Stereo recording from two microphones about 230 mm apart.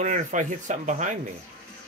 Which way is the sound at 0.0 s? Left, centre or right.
Right.